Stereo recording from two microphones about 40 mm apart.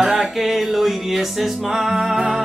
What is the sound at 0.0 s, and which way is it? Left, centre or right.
Music, centre.